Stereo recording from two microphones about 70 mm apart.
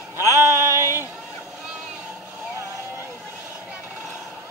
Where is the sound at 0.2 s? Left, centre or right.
Right.